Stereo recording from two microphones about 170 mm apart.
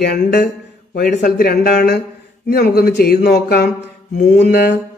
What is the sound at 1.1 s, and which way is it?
Speech, 60° left (ahead or behind).